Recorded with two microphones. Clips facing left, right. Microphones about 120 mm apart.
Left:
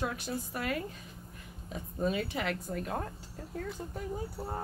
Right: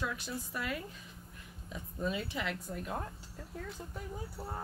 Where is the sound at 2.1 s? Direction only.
60° left (ahead or behind).